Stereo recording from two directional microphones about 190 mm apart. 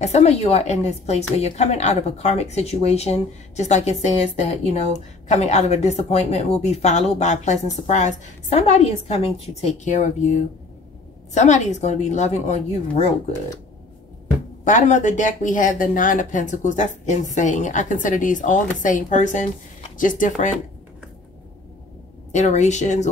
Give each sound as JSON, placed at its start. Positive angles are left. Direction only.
{"t": 0.0, "sound": "speech", "side_deg": 35}
{"t": 14.6, "sound": "speech", "side_deg": 40}
{"t": 22.3, "sound": "speech", "side_deg": 35}